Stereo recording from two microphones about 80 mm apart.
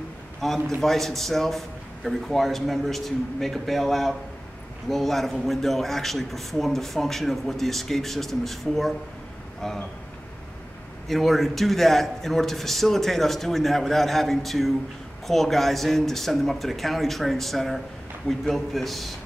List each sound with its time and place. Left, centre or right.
0.4 s a man's voice: centre
11.1 s a man's voice: centre